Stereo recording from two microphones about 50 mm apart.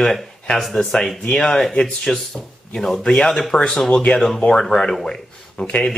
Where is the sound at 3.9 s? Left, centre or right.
Left.